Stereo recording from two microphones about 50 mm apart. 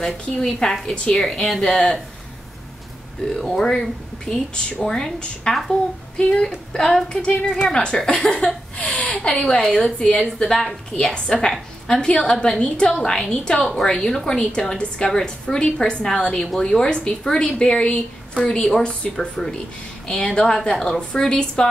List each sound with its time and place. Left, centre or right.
0.0 s a woman's voice: centre
3.5 s a woman's voice: centre
20.2 s a woman's voice: centre